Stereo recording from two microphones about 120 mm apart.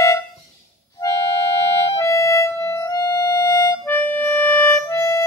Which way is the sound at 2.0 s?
25° left (ahead or behind).